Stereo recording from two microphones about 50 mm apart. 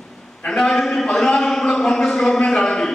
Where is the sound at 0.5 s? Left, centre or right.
Centre.